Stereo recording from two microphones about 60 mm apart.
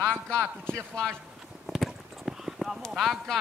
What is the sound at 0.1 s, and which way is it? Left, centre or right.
Speech, centre.